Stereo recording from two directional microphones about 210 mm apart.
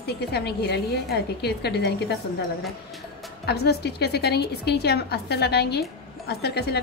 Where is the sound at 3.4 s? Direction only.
50° left (ahead or behind).